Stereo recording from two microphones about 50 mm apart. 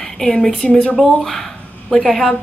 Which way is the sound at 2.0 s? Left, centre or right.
Centre.